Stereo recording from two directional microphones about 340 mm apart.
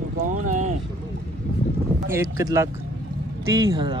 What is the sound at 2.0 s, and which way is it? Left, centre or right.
Speech, centre.